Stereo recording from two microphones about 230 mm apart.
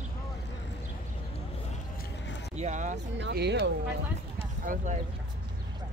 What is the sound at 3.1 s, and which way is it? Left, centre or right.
Speech, right.